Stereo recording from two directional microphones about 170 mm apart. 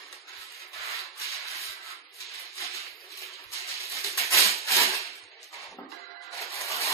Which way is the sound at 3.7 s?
20° left (ahead or behind).